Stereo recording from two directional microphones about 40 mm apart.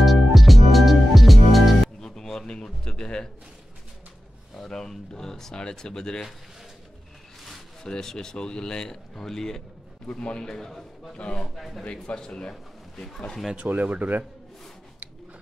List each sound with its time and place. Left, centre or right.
0.0 s music: centre
2.0 s a sound: centre
4.6 s speech: centre
7.8 s speech: centre
10.1 s speech: left
11.1 s a man's voice: left
11.5 s speech: centre
11.8 s a man's voice: left
13.6 s a man's voice: right